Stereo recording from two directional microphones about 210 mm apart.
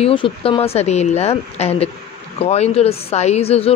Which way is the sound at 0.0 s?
25° left (ahead or behind).